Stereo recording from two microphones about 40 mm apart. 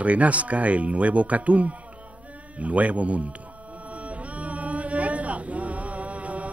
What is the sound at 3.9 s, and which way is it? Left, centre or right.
Music, right.